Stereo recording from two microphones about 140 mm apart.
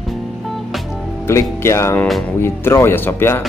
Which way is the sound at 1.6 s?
20° left (ahead or behind).